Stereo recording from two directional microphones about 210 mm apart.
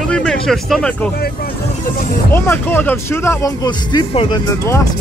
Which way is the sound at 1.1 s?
45° left (ahead or behind).